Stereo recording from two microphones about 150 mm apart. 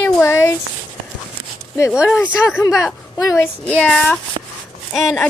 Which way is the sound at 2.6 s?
20° left (ahead or behind).